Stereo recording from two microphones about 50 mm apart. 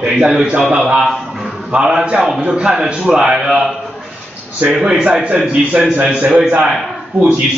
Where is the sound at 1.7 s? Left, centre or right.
Centre.